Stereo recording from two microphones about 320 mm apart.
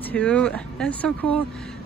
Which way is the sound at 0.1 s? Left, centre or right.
Centre.